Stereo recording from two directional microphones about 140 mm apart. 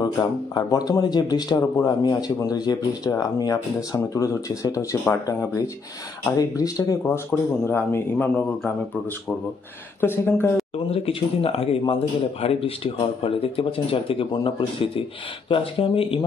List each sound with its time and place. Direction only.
0.0 s a man's voice: 30° left (ahead or behind); by 8.7 s 10° left (ahead or behind)
9.9 s a man's voice: 15° left (ahead or behind)
10.9 s speech: 40° left (ahead or behind)